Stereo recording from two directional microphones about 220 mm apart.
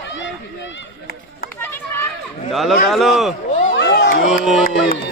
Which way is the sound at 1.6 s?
10° left (ahead or behind).